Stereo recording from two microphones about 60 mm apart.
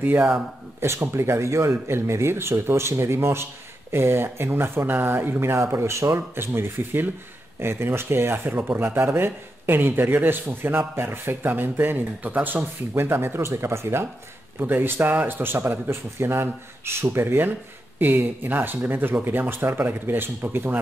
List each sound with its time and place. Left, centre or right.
0.7 s speech: right
5.6 s speech: right
12.9 s speech: right
14.6 s speech: right